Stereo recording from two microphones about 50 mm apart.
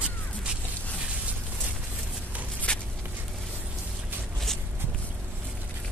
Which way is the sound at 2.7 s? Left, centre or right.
Left.